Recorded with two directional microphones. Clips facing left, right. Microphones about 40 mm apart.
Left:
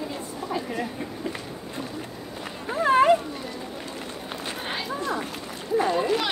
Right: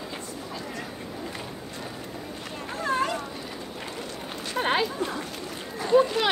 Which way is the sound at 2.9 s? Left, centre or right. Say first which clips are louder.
Left 9 dB; left.